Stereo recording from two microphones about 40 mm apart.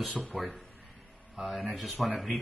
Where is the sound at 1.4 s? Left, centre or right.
Centre.